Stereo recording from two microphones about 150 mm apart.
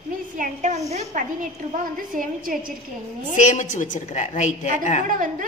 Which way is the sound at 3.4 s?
55° left (ahead or behind).